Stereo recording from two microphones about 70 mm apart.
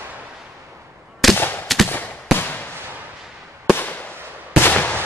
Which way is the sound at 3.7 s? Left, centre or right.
Left.